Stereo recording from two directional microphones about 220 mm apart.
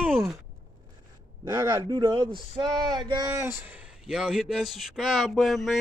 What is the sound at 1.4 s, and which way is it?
Speech, 15° right (ahead or behind).